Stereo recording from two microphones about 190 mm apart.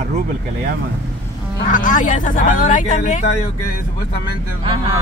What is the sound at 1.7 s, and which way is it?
Speech, 45° left (ahead or behind).